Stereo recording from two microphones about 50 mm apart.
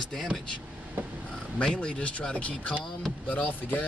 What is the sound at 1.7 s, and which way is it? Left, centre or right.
Speech, left.